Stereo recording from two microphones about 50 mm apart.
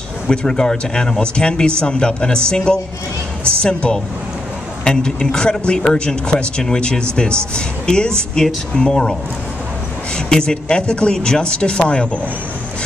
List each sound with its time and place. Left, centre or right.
0.3 s speech: centre
10.1 s speech: centre